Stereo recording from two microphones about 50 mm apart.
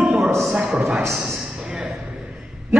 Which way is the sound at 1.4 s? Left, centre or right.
Centre.